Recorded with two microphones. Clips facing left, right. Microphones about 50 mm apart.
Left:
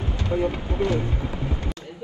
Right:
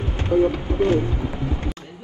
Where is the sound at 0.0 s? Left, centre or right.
Right.